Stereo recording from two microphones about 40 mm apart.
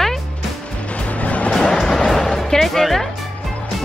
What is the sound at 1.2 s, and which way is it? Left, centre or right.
Vehicle, left.